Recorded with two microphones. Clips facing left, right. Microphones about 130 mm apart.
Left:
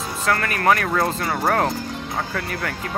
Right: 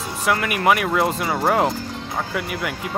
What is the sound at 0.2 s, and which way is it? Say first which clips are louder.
Speech: right 1 dB; 15° right (ahead or behind).